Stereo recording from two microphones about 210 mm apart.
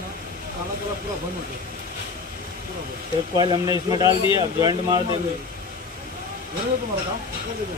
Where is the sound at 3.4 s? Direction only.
20° right (ahead or behind).